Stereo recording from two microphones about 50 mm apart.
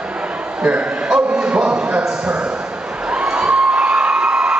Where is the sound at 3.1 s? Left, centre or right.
Centre.